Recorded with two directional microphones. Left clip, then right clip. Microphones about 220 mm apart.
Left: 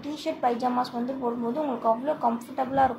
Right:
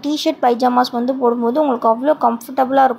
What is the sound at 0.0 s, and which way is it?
A woman's voice, 30° right (ahead or behind).